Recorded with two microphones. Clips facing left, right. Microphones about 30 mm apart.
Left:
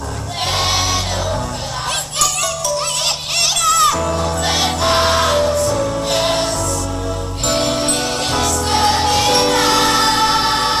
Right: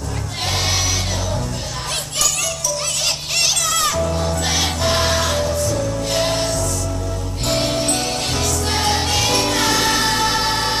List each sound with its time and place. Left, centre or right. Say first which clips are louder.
0.5 s music: left 3 dB; centre
3.3 s music: left 6 dB; left
5.5 s music: left 4 dB; left
5.8 s music: left 3 dB; left
7.4 s music: left 2 dB; centre
9.3 s music: left 3 dB; left